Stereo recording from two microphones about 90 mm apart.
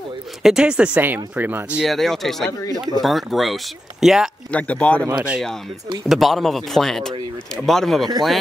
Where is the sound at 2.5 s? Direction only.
35° left (ahead or behind).